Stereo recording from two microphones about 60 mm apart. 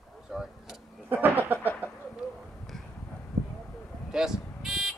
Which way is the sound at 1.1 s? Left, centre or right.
Right.